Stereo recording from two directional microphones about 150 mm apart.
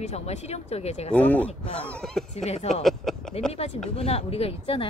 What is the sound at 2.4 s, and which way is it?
Speech, 50° left (ahead or behind).